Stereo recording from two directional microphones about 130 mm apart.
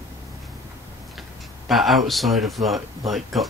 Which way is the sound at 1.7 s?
Centre (ahead or behind).